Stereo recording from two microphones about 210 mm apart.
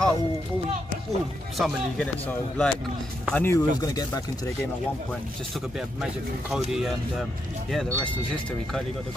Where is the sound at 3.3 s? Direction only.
10° left (ahead or behind).